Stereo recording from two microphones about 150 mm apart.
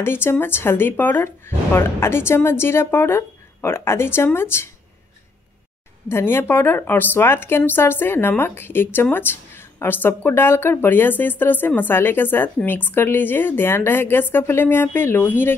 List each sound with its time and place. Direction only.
0.0 s a woman's voice: 15° left (ahead or behind)
6.0 s a woman's voice: 15° left (ahead or behind)